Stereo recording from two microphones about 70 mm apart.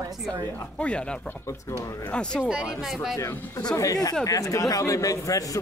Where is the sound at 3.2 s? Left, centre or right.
Left.